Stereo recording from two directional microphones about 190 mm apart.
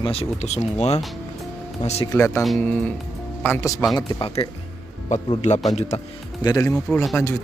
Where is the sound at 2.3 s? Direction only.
5° left (ahead or behind).